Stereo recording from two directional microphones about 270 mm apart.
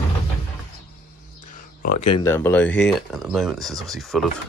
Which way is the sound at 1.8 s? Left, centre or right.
Left.